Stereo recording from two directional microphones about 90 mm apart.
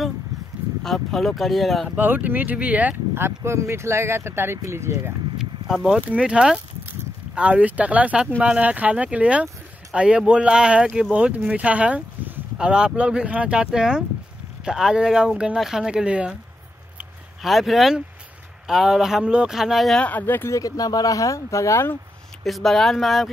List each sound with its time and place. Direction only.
0.8 s speech: 5° left (ahead or behind)
2.0 s speech: 20° right (ahead or behind)
5.4 s a sound: 5° right (ahead or behind)
5.9 s speech: 15° right (ahead or behind)
17.4 s speech: centre (ahead or behind)
20.0 s speech: 20° left (ahead or behind)
20.5 s speech: 40° left (ahead or behind)
22.4 s speech: centre (ahead or behind)